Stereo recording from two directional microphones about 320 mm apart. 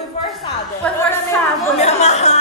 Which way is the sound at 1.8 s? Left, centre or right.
Centre.